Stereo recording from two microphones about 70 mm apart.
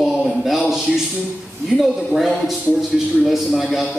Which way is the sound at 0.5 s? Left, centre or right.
Centre.